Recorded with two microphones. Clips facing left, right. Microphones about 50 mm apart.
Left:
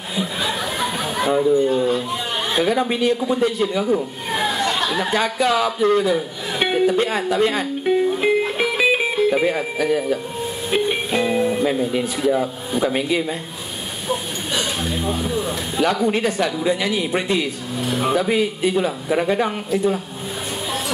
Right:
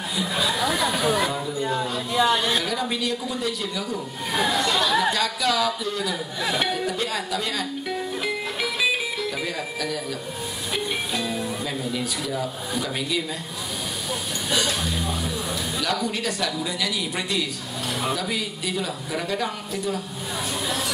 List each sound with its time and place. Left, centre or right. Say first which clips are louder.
0.1 s a sound: left 2 dB; left
2.5 s speech: left 6 dB; left
6.6 s music: left 8 dB; left
10.7 s speech: left 7 dB; left
14.8 s speech: left 4 dB; left